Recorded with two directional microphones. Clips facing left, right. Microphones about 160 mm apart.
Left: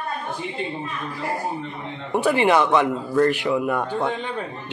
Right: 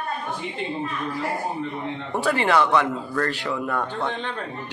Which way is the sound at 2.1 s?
15° left (ahead or behind).